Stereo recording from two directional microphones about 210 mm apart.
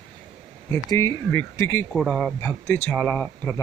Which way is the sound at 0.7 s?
15° left (ahead or behind).